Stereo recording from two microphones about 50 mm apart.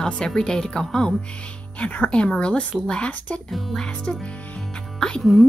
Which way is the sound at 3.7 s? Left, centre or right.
Centre.